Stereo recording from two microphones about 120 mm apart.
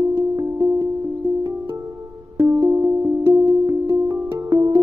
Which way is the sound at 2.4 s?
25° right (ahead or behind).